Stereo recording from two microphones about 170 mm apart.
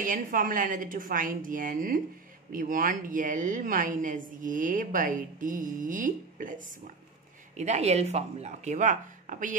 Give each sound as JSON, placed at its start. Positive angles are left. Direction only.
{"t": 0.0, "sound": "a woman's voice", "side_deg": -55}
{"t": 7.5, "sound": "a woman's voice", "side_deg": -40}